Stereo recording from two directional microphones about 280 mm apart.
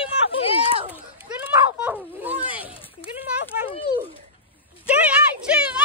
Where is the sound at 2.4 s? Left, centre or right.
Centre.